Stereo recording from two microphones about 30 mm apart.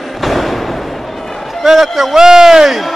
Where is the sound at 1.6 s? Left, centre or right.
Centre.